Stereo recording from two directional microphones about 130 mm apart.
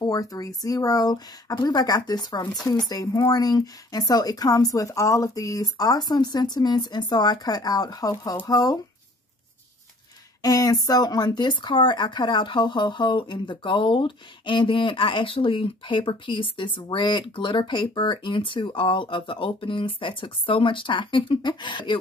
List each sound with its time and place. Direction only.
0.0 s speech: 25° left (ahead or behind)
10.4 s speech: 25° left (ahead or behind)